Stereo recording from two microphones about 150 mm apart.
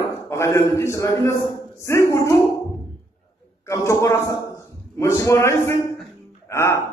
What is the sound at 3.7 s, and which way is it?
A man's voice, 20° left (ahead or behind).